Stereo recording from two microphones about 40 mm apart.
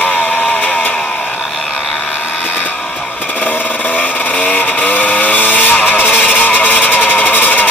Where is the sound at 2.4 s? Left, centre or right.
Left.